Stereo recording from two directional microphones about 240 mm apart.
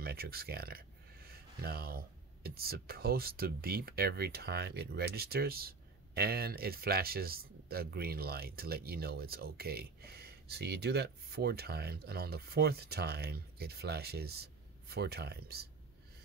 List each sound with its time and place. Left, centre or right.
0.0 s speech: right